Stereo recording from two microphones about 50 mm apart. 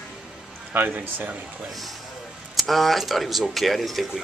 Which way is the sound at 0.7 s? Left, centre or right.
Right.